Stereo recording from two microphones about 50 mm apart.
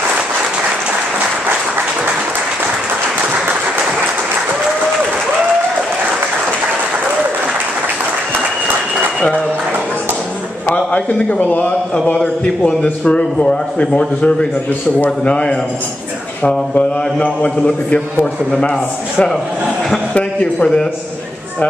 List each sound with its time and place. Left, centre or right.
10.7 s a man's voice: left
12.2 s a man's voice: centre
20.2 s a man's voice: left